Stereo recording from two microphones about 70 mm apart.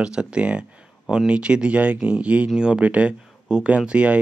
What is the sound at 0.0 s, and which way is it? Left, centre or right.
Speech, centre.